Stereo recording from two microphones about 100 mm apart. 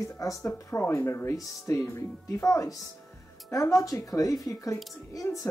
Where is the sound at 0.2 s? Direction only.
30° left (ahead or behind).